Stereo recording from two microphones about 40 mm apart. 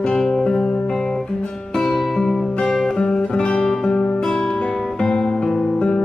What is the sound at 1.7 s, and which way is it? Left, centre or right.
Music, centre.